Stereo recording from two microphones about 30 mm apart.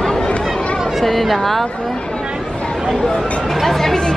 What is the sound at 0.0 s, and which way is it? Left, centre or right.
Chatter, left.